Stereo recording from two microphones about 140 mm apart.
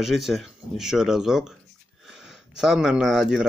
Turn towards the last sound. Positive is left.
turn(degrees=-5)  # may be behind; listen again after turning